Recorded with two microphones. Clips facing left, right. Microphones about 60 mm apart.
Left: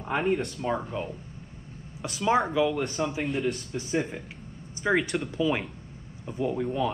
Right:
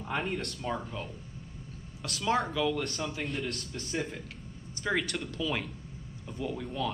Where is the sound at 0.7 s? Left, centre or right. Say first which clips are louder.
Left 6 dB; centre.